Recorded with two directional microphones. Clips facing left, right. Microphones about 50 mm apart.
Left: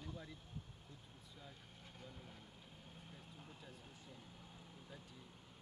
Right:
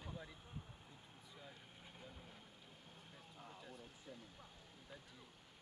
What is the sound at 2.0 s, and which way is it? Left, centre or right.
Vehicle, centre.